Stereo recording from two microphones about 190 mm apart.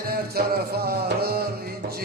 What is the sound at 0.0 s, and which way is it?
Music, 50° right (ahead or behind).